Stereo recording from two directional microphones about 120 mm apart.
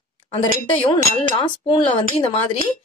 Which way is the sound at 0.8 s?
40° left (ahead or behind).